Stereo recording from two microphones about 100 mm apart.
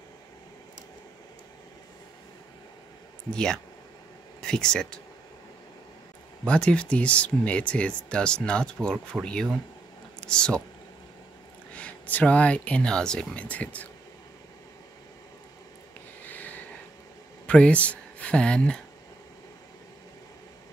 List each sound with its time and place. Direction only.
3.3 s speech: 5° left (ahead or behind)
6.4 s speech: 10° left (ahead or behind)
11.7 s speech: 15° left (ahead or behind)
16.3 s a sound: 15° left (ahead or behind)
17.5 s speech: 10° left (ahead or behind)